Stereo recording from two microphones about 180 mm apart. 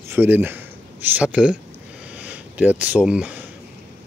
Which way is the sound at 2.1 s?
10° right (ahead or behind).